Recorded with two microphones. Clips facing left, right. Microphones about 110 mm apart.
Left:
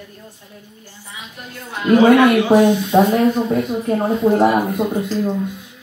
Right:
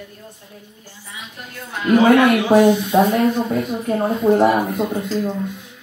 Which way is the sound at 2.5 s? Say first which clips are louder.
Even; 5° left (ahead or behind).